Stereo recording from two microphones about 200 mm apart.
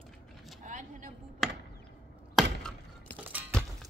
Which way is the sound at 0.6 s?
40° right (ahead or behind).